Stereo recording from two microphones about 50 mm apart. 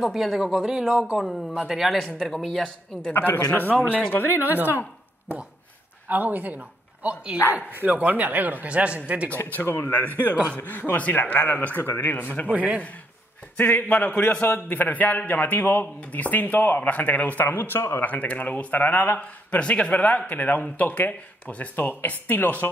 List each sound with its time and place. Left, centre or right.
0.0 s speech: centre
2.6 s a man's voice: centre
3.1 s speech: left
4.5 s speech: right
6.0 s a woman's voice: right
9.3 s speech: left
12.5 s a man's voice: right
13.6 s speech: left
17.5 s speech: left
18.0 s speech: left
19.1 s a man's voice: left